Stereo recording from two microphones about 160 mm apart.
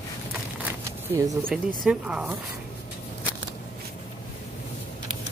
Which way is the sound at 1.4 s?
5° right (ahead or behind).